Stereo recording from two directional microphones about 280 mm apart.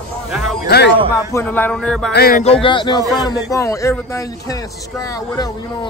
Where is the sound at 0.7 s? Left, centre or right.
Left.